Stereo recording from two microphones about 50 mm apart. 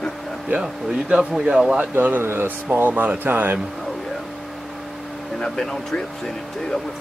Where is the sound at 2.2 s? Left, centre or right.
Right.